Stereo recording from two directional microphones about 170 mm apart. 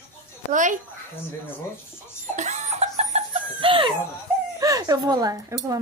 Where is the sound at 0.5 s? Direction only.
50° right (ahead or behind).